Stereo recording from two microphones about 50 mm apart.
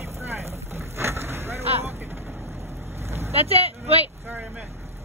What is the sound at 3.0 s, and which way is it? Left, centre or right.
Vehicle, right.